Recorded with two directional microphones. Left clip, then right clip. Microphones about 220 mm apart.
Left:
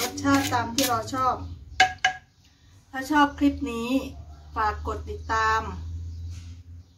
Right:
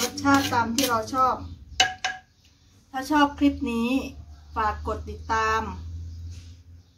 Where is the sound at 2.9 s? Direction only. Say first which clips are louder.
Even; 5° right (ahead or behind).